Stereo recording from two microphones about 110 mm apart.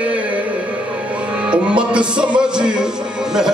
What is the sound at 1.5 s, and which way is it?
Music, 10° right (ahead or behind).